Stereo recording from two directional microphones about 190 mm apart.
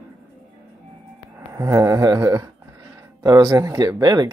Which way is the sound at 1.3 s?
15° right (ahead or behind).